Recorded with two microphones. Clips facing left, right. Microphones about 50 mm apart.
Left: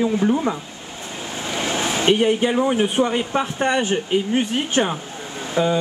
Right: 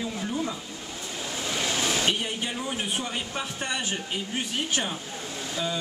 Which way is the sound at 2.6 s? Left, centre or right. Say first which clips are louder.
Left 12 dB; left.